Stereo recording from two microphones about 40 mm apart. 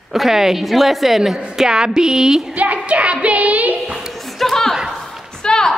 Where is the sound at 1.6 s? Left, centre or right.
Centre.